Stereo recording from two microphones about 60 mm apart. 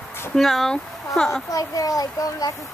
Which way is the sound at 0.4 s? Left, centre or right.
Centre.